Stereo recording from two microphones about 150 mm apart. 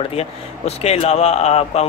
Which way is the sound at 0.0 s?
40° left (ahead or behind).